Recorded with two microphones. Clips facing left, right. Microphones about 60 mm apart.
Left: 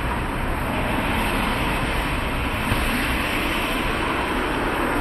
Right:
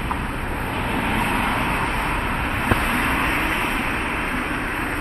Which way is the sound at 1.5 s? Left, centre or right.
Right.